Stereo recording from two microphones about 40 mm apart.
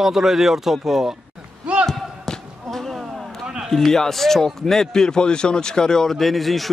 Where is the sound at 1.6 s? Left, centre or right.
Right.